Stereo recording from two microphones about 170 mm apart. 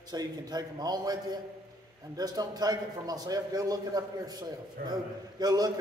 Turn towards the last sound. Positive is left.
turn(degrees=-20)  # may be behind; listen again after turning